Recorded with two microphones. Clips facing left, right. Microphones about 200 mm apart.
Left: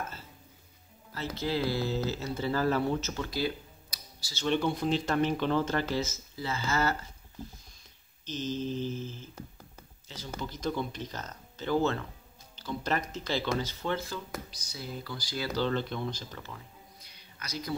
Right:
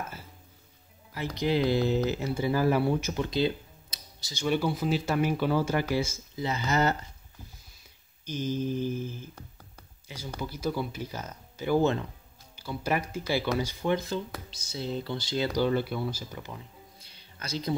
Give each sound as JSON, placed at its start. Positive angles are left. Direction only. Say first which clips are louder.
{"t": 1.1, "sound": "speech", "louder": "right 4 dB", "side_deg": -15}
{"t": 8.3, "sound": "speech", "louder": "right 3 dB", "side_deg": -10}
{"t": 17.0, "sound": "a sound", "louder": "right 6 dB", "side_deg": -30}